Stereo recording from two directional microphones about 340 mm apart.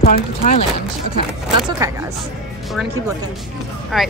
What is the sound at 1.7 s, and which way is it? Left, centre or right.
Speech, centre.